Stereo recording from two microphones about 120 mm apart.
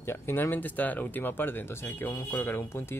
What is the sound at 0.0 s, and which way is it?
Speech, 20° left (ahead or behind).